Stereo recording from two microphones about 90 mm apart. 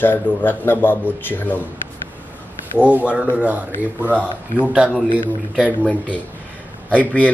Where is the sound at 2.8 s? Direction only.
15° right (ahead or behind).